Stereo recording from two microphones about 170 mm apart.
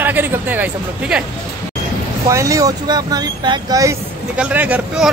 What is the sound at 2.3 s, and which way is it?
Speech, 20° right (ahead or behind).